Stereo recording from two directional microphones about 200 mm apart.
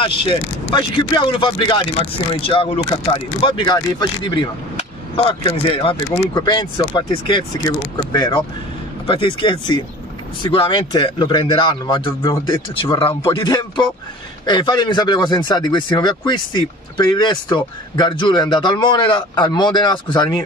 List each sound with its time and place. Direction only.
0.0 s speech: 25° left (ahead or behind)